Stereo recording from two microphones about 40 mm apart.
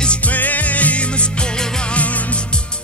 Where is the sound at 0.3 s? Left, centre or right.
Left.